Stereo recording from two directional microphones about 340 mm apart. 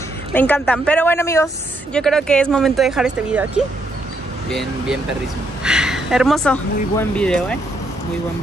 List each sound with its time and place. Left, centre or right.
0.3 s speech: centre